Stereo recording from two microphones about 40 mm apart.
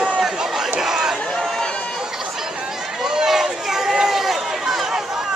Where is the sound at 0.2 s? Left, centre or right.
Centre.